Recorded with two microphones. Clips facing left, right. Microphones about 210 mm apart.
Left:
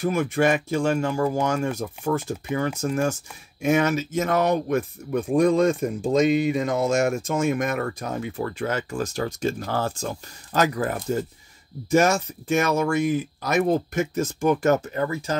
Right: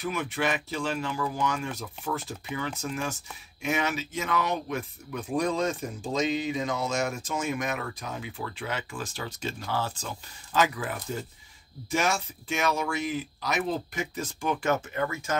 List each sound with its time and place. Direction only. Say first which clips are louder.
0.0 s speech: left 8 dB; 45° left (ahead or behind)